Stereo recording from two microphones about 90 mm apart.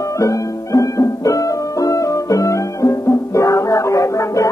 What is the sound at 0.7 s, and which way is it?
Music, 40° left (ahead or behind).